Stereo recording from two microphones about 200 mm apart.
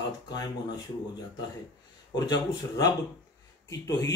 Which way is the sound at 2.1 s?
20° left (ahead or behind).